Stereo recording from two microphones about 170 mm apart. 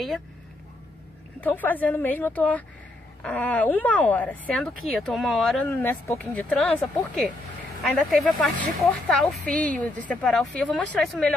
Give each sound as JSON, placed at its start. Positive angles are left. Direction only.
{"t": 1.4, "sound": "speech", "side_deg": 10}
{"t": 5.7, "sound": "speech", "side_deg": 15}
{"t": 6.1, "sound": "speech", "side_deg": 0}